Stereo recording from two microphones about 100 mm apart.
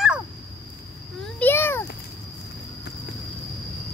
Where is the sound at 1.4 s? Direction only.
20° left (ahead or behind).